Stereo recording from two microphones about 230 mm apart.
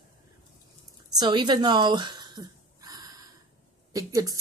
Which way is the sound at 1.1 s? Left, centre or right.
Centre.